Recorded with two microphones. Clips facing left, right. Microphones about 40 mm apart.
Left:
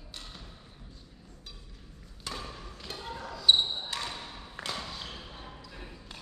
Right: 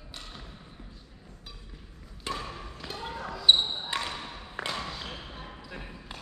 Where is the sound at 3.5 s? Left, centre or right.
Right.